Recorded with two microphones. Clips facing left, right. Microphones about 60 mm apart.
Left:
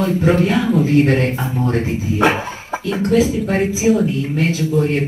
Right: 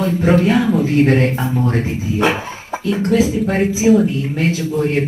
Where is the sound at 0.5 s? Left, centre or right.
Right.